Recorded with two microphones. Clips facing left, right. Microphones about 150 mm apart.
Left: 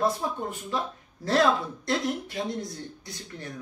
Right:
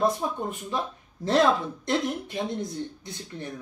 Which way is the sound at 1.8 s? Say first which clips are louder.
Right 1 dB; 20° right (ahead or behind).